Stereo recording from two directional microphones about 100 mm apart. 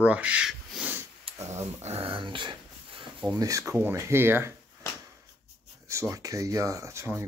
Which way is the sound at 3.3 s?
35° right (ahead or behind).